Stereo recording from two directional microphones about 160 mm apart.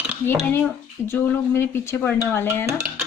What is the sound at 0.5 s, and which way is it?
A woman's voice, 15° left (ahead or behind).